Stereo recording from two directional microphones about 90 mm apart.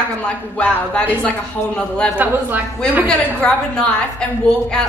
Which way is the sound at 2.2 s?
20° right (ahead or behind).